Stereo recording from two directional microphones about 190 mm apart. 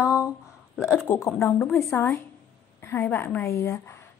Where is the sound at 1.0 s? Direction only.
15° left (ahead or behind).